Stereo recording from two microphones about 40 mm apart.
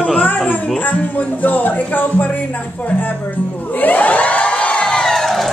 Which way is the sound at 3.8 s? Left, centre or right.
Left.